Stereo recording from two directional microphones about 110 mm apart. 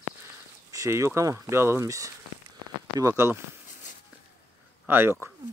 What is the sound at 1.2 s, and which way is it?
Speech, 25° right (ahead or behind).